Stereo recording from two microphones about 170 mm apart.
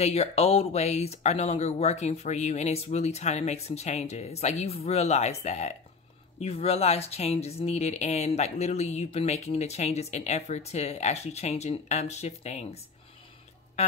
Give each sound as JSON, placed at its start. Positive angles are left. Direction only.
{"t": 0.0, "sound": "speech", "side_deg": 40}